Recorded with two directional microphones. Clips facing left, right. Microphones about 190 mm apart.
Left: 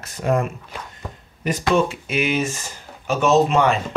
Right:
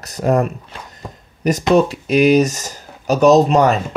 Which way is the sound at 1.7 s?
40° right (ahead or behind).